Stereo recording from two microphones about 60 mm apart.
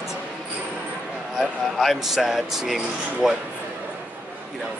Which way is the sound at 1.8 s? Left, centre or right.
Centre.